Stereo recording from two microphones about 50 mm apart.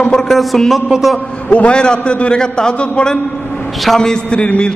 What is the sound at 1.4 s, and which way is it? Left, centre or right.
Speech, left.